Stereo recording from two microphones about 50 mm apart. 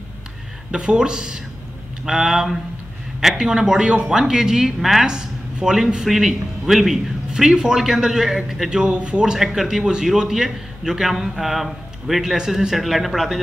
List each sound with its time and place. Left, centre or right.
0.7 s speech: centre